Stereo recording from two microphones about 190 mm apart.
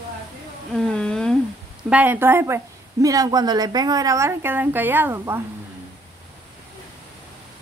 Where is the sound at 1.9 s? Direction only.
10° right (ahead or behind).